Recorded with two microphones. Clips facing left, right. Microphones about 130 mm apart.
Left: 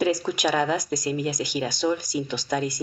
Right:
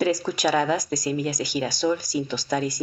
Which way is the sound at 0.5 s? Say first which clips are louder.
Right 2 dB; 5° left (ahead or behind).